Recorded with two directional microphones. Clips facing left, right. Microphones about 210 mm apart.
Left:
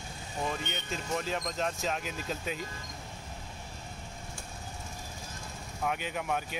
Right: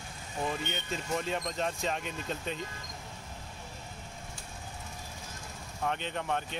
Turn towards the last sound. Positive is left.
turn(degrees=5)  # may be behind; listen again after turning